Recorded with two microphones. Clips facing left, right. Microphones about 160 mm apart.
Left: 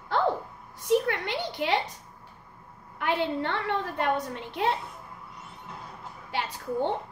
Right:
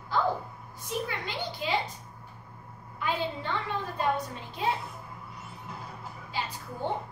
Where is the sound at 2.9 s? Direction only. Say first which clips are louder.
Left 4 dB; 65° left (ahead or behind).